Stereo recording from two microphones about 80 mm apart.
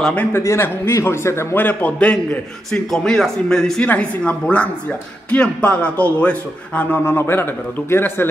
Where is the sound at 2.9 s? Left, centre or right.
Centre.